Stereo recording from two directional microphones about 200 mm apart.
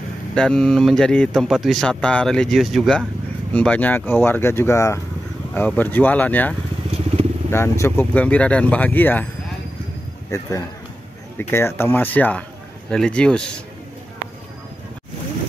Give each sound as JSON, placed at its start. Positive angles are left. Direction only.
{"t": 0.3, "sound": "speech", "side_deg": 5}
{"t": 7.5, "sound": "speech", "side_deg": 15}
{"t": 10.3, "sound": "speech", "side_deg": 15}